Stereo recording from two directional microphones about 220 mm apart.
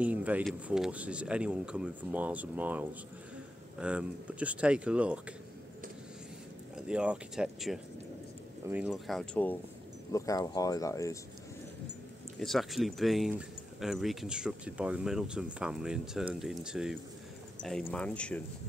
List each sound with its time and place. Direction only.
0.0 s speech: 5° right (ahead or behind)
6.9 s speech: 5° right (ahead or behind); by 11.1 s 15° left (ahead or behind)
12.4 s speech: centre (ahead or behind)